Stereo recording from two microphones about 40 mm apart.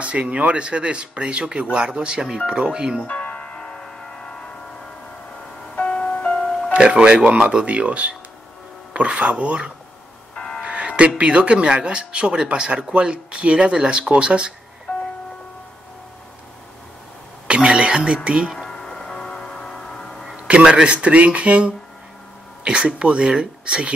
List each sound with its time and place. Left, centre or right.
0.0 s speech: right
3.2 s music: left
5.8 s music: left
6.7 s speech: right
10.3 s music: left
10.6 s speech: right
17.5 s doorbell: right
18.0 s speech: right
18.7 s music: centre
20.4 s speech: right